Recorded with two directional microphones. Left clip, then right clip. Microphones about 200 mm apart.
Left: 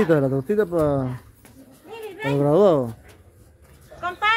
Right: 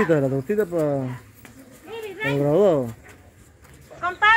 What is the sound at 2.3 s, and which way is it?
Speech, 20° left (ahead or behind).